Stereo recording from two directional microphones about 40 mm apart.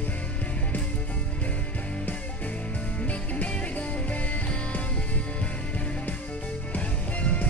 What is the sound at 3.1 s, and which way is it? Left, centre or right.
Music, left.